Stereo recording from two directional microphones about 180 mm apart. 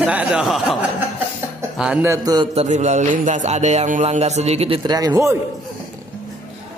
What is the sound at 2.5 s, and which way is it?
Music, 40° right (ahead or behind).